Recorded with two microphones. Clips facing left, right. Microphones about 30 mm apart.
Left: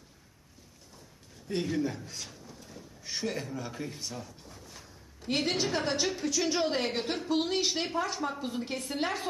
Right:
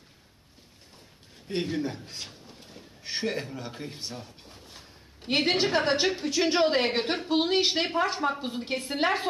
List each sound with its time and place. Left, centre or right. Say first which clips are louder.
1.5 s a man's voice: right 1 dB; right